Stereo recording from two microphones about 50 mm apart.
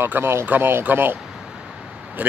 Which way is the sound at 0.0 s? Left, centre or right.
Right.